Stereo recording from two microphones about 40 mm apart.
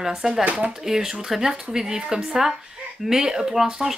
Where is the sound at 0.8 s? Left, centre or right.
Centre.